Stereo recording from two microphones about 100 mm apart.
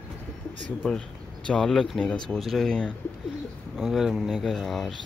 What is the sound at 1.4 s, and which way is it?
Speech, 5° left (ahead or behind).